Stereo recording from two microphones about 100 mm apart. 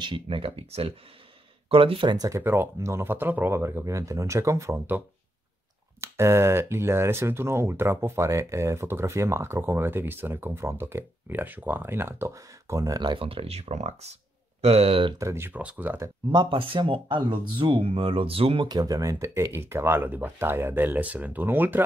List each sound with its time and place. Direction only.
0.0 s speech: 55° right (ahead or behind)
2.1 s speech: 35° right (ahead or behind)
2.4 s speech: 20° right (ahead or behind)
13.0 s speech: 60° right (ahead or behind)
15.1 s speech: 25° right (ahead or behind)
16.3 s speech: 55° right (ahead or behind)
18.7 s speech: 40° right (ahead or behind); by 21.8 s 20° right (ahead or behind)